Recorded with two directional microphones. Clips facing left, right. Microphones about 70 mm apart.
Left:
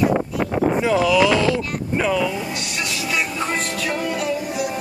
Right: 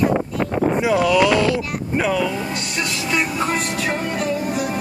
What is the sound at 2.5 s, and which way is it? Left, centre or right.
Vehicle, right.